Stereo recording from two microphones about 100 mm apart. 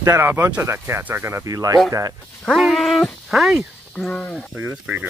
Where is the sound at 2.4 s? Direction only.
Centre (ahead or behind).